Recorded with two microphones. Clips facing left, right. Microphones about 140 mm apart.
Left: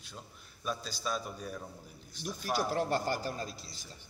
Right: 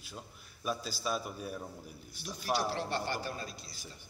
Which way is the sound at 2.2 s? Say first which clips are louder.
Even; 45° left (ahead or behind).